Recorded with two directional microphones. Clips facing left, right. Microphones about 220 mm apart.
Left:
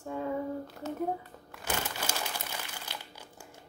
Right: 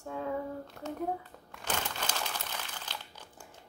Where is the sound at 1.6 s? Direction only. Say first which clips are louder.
Left 1 dB; 10° left (ahead or behind).